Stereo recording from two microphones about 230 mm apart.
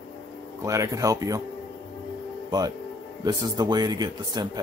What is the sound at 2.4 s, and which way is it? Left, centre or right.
Speech, centre.